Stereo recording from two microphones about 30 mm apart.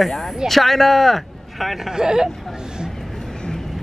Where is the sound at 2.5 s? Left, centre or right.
Right.